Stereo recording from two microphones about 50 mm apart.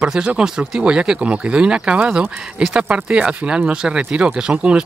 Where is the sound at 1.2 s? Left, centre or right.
Right.